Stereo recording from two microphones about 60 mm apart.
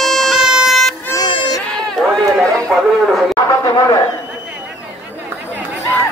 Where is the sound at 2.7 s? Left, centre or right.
Centre.